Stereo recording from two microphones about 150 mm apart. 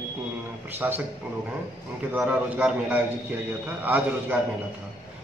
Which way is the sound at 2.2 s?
10° right (ahead or behind).